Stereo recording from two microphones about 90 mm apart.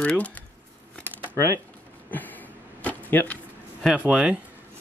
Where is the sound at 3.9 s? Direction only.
10° right (ahead or behind).